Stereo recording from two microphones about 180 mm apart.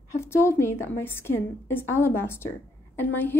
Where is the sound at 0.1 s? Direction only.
15° left (ahead or behind).